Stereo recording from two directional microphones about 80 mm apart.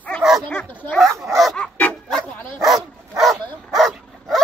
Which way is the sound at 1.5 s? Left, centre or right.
Centre.